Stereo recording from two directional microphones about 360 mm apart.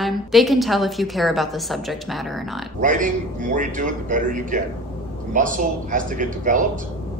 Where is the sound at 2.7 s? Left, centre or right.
Right.